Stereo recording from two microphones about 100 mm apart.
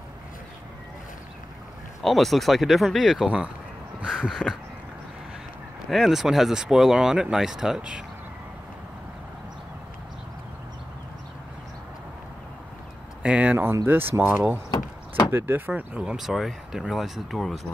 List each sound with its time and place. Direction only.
2.0 s speech: centre (ahead or behind)
5.9 s speech: centre (ahead or behind)
13.2 s speech: 10° right (ahead or behind)
14.7 s door: 40° left (ahead or behind)
15.3 s speech: 20° right (ahead or behind)
16.0 s speech: 5° right (ahead or behind)